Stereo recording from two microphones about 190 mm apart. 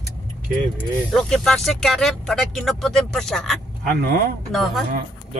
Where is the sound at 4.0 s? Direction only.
50° right (ahead or behind).